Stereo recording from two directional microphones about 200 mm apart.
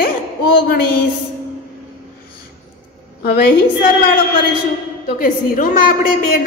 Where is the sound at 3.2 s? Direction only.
50° left (ahead or behind).